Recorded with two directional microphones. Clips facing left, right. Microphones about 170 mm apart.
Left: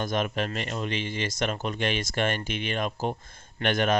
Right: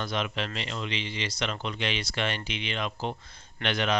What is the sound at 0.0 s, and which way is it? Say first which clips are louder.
Speech: left 4 dB; 45° left (ahead or behind).